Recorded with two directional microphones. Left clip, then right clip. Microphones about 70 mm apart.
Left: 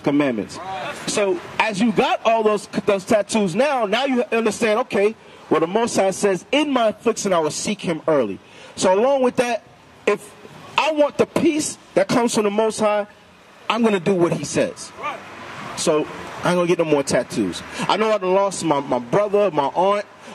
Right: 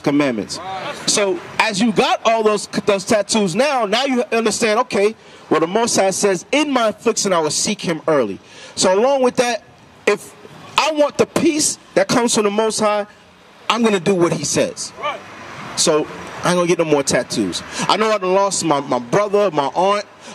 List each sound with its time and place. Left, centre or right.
0.0 s a man's voice: right